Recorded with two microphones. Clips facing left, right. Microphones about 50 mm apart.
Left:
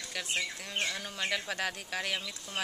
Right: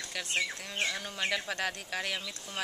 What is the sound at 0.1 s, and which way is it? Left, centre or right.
Speech, centre.